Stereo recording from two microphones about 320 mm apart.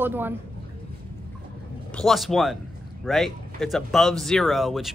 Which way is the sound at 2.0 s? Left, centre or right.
Centre.